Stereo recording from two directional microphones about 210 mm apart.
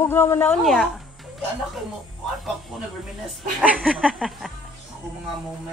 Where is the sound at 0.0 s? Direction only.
10° left (ahead or behind).